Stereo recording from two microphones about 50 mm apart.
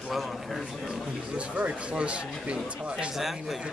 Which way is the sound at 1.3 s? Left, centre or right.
Right.